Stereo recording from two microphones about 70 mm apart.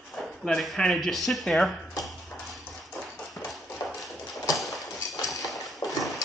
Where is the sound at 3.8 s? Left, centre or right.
Centre.